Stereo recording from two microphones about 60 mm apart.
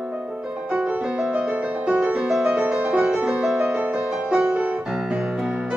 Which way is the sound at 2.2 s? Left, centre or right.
Centre.